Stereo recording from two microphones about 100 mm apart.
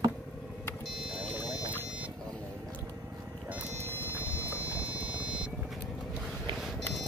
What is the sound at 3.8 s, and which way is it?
Vehicle, 20° right (ahead or behind).